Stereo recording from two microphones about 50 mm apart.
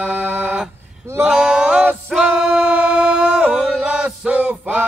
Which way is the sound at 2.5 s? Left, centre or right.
Right.